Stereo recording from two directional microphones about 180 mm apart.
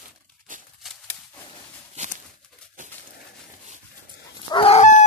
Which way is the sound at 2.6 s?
5° left (ahead or behind).